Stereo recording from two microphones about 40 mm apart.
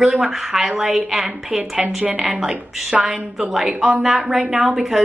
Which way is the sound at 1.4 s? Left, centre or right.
Centre.